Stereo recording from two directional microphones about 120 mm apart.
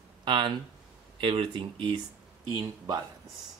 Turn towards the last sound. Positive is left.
turn(degrees=-35)  # may be behind; listen again after turning